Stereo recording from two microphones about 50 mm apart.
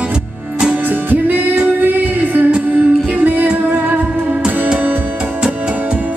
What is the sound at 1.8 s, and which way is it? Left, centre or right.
Music, right.